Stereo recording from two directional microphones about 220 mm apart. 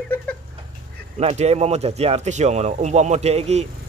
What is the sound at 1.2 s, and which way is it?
A man's voice, 30° right (ahead or behind).